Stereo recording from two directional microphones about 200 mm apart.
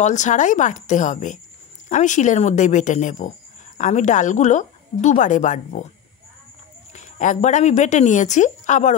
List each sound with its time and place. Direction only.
0.0 s speech: 35° left (ahead or behind)
6.9 s a woman's voice: 35° left (ahead or behind)